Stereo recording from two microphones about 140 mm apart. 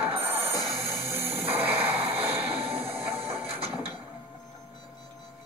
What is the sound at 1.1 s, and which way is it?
Music, 15° right (ahead or behind).